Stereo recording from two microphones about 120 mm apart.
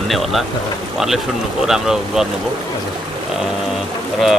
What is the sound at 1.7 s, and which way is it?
Speech, 5° right (ahead or behind).